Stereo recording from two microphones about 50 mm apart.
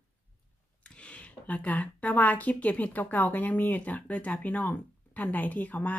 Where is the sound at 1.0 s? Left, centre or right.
Left.